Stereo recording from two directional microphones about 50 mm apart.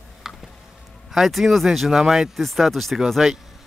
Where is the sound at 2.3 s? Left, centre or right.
Centre.